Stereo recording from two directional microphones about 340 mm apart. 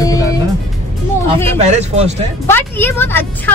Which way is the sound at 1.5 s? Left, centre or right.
Centre.